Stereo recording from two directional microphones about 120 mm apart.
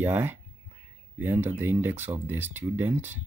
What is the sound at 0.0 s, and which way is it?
Speech, 20° right (ahead or behind).